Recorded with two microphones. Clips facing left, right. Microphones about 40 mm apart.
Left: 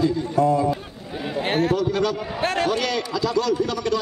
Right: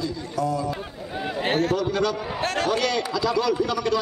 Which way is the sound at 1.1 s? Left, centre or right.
Centre.